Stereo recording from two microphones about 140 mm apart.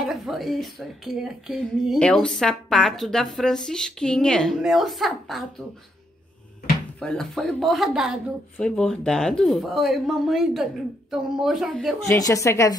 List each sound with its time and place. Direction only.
0.1 s speech: centre (ahead or behind)
7.0 s speech: 5° left (ahead or behind)
12.1 s a woman's voice: 25° left (ahead or behind)